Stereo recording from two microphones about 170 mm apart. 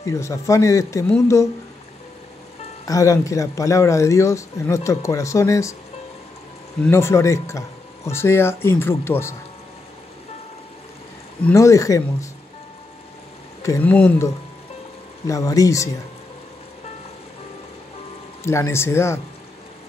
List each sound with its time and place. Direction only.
0.0 s speech: 20° left (ahead or behind)
2.8 s speech: 20° left (ahead or behind)
6.8 s speech: 15° left (ahead or behind)
11.4 s speech: 15° left (ahead or behind)
13.6 s speech: 15° left (ahead or behind)
18.4 s speech: 15° left (ahead or behind)